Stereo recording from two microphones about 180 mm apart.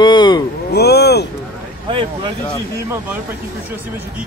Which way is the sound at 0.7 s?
65° left (ahead or behind).